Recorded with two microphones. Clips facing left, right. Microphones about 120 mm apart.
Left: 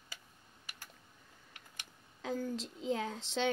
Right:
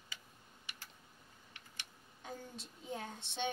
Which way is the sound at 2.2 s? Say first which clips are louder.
Left 11 dB; 90° left.